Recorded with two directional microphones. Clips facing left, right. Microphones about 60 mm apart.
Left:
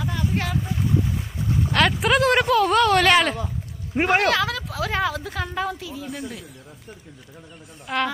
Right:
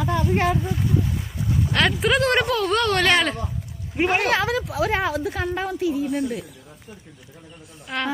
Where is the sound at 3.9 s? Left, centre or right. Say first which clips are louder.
Left 2 dB; left.